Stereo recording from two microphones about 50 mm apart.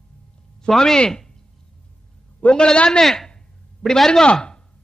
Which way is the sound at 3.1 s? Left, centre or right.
Centre.